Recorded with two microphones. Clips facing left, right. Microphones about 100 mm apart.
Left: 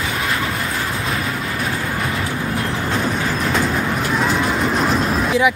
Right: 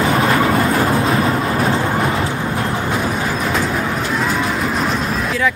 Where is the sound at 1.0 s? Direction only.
35° right (ahead or behind).